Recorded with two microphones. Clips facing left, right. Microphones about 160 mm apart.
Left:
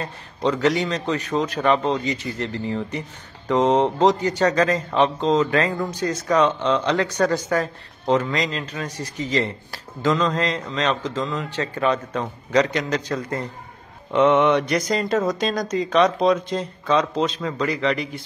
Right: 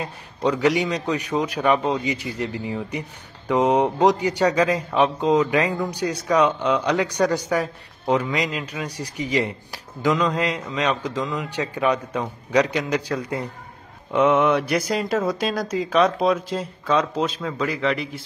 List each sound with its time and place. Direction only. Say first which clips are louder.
0.0 s speech: even; 10° right (ahead or behind)